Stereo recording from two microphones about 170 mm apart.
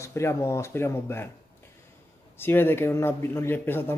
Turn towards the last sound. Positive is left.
turn(degrees=10)  # may be behind; listen again after turning